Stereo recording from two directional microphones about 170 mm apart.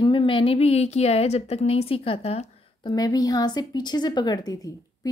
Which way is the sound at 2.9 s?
25° left (ahead or behind).